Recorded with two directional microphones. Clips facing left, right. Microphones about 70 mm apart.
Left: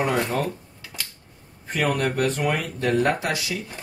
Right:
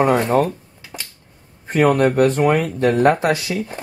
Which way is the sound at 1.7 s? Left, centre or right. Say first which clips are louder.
Right 9 dB; right.